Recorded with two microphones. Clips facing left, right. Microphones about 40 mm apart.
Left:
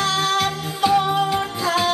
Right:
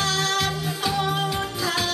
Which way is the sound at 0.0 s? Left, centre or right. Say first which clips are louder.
Left 4 dB; left.